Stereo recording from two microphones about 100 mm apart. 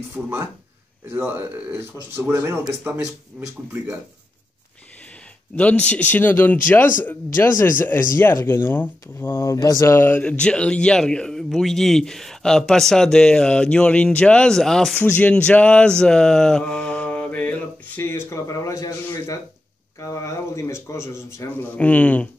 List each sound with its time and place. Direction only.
0.2 s speech: 5° right (ahead or behind)
1.1 s a man's voice: 20° right (ahead or behind)
5.6 s a man's voice: 15° left (ahead or behind)
15.0 s a man's voice: 15° left (ahead or behind)
21.7 s a man's voice: 15° left (ahead or behind)